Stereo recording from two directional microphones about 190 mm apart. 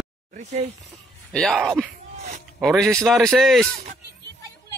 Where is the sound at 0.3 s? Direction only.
35° right (ahead or behind).